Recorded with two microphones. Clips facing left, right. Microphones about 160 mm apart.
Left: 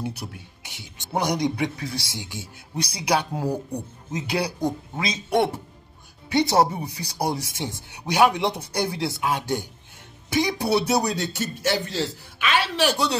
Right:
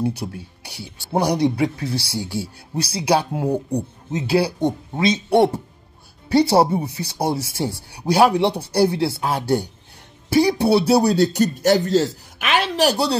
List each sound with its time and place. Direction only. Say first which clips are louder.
0.0 s a man's voice: right 8 dB; 30° right (ahead or behind)